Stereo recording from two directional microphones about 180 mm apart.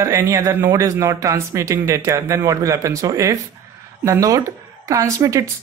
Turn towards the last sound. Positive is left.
turn(degrees=-15)  # may be behind; listen again after turning